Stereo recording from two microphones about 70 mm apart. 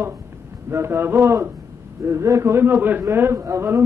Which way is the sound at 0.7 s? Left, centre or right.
Right.